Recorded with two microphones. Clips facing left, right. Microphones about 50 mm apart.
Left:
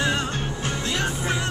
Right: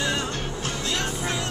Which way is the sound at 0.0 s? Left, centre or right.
Centre.